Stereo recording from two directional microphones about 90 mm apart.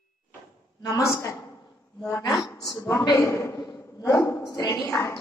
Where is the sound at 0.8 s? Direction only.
35° left (ahead or behind).